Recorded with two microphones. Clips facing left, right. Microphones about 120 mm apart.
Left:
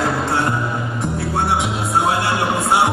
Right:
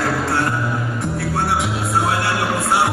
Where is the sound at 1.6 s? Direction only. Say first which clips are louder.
Even; centre (ahead or behind).